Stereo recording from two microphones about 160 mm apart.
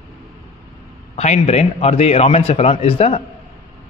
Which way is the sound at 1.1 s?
45° left (ahead or behind).